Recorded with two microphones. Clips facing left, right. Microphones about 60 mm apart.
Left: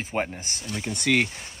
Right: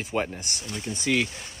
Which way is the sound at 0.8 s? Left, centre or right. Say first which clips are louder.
Left 2 dB; left.